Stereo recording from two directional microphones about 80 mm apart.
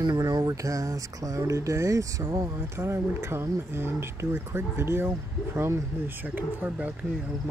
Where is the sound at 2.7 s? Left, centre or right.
Right.